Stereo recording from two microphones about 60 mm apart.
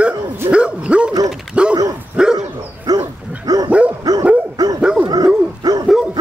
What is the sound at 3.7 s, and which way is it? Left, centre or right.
Dog, right.